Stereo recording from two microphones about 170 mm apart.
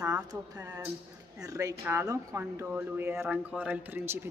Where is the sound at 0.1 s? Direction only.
20° right (ahead or behind).